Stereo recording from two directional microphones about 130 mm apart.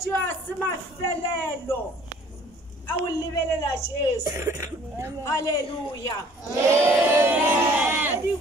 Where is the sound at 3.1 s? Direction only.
25° left (ahead or behind).